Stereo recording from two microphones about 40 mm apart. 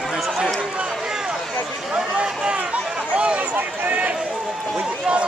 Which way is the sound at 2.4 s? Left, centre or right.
Right.